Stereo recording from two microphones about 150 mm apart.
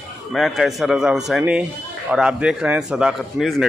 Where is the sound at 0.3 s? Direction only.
Centre (ahead or behind).